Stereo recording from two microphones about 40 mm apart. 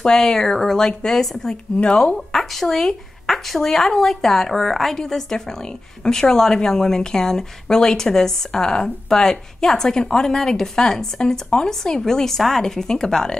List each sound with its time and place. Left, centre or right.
0.0 s a woman's voice: centre
1.8 s speech: left
2.1 s a woman's voice: centre